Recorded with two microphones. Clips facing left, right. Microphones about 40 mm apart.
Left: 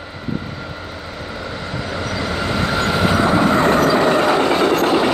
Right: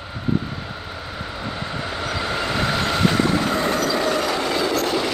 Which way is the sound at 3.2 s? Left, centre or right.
Left.